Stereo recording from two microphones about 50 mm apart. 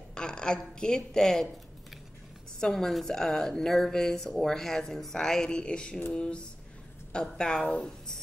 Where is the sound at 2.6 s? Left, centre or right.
Centre.